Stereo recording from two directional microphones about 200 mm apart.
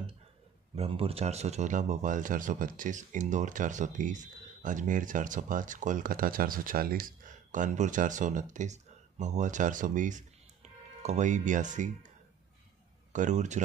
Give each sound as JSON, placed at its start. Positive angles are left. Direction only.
{"t": 0.7, "sound": "speech", "side_deg": -30}
{"t": 13.1, "sound": "speech", "side_deg": -40}